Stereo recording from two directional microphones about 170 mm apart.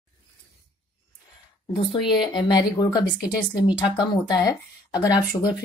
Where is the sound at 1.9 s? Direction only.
30° left (ahead or behind).